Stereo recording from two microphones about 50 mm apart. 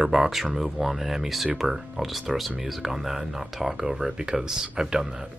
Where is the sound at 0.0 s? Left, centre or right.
Centre.